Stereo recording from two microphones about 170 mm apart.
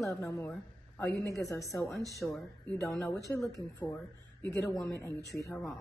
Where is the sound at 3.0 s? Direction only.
20° left (ahead or behind).